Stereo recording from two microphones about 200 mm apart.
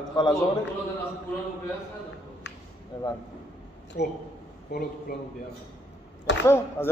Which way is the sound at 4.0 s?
55° left (ahead or behind).